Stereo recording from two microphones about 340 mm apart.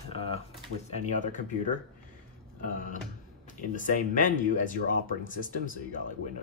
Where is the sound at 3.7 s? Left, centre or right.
Left.